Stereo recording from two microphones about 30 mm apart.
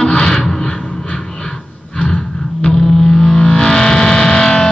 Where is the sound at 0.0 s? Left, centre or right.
Left.